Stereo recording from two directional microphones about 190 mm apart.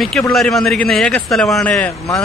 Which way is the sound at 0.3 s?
Centre (ahead or behind).